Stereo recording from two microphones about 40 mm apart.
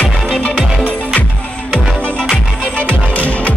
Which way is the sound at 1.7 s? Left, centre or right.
Centre.